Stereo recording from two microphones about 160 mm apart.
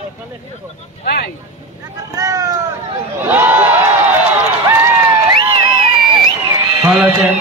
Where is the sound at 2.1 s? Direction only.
20° right (ahead or behind).